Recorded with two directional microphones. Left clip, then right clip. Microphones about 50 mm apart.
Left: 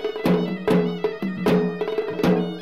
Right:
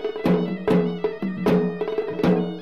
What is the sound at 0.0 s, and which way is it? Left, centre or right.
Music, left.